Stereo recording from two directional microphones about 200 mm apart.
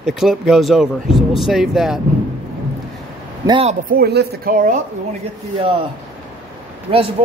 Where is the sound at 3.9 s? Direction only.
55° right (ahead or behind).